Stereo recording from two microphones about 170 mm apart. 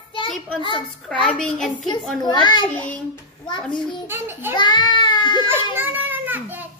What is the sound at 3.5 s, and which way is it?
Speech, 25° left (ahead or behind).